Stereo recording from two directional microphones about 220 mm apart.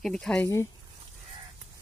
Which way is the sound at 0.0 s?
Centre (ahead or behind).